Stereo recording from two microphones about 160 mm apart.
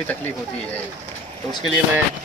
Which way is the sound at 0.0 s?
10° left (ahead or behind).